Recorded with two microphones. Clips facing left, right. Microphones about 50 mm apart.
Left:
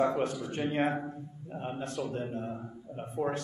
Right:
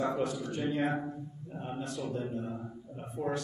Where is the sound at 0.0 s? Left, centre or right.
Left.